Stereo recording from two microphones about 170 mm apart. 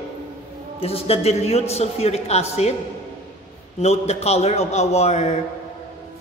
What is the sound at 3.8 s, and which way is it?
A man's voice, 40° left (ahead or behind).